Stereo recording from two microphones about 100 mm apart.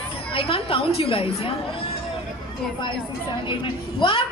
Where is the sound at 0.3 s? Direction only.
65° left (ahead or behind).